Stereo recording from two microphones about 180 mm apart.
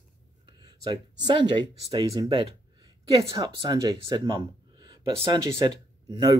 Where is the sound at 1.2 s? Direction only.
25° right (ahead or behind).